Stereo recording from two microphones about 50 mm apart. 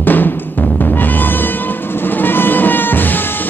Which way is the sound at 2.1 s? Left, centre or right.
Left.